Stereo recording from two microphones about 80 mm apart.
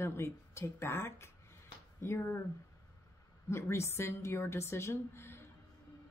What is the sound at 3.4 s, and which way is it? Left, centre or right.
A woman's voice, left.